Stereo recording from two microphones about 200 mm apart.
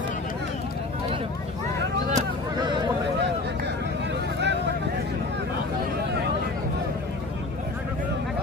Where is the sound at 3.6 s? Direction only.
60° right (ahead or behind).